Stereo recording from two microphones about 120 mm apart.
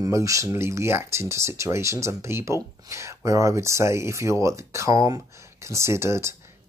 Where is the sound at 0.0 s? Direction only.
25° right (ahead or behind).